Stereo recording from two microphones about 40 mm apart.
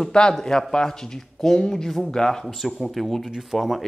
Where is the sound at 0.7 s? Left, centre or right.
Centre.